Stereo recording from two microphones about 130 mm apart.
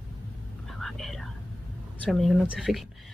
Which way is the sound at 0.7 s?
Centre (ahead or behind).